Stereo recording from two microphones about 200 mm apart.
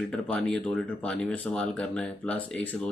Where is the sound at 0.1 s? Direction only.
5° left (ahead or behind).